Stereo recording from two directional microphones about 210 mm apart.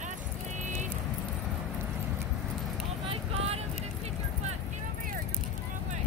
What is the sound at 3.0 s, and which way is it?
Vehicle, 25° right (ahead or behind).